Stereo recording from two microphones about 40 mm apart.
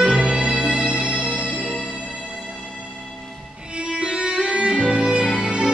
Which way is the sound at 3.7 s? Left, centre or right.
Right.